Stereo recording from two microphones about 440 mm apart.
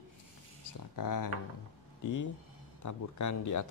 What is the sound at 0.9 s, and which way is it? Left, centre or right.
Speech, left.